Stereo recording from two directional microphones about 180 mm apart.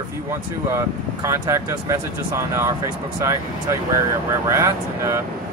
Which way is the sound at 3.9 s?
15° right (ahead or behind).